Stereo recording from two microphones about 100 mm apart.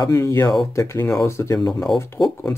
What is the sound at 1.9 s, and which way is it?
Speech, centre (ahead or behind).